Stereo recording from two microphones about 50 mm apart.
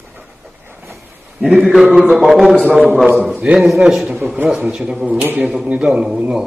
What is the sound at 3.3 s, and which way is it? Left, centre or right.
Speech, right.